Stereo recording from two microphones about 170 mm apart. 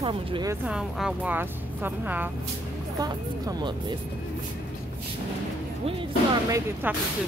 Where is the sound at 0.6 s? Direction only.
5° right (ahead or behind).